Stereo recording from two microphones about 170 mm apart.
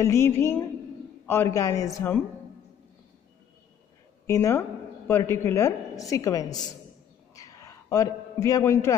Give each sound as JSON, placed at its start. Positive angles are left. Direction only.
{"t": 0.0, "sound": "a woman's voice", "side_deg": 15}
{"t": 4.3, "sound": "a woman's voice", "side_deg": 15}
{"t": 7.3, "sound": "a sound", "side_deg": 20}